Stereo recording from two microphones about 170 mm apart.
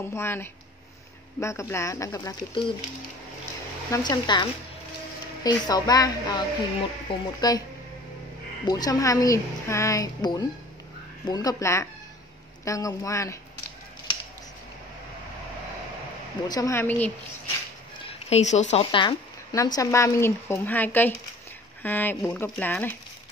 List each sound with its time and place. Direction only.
0.0 s speech: 15° left (ahead or behind)
3.9 s a woman's voice: 25° left (ahead or behind)
8.6 s a woman's voice: 20° left (ahead or behind)
16.4 s speech: 20° left (ahead or behind)
18.0 s a woman's voice: 40° left (ahead or behind)
18.9 s speech: 25° left (ahead or behind); by 22.9 s 10° left (ahead or behind)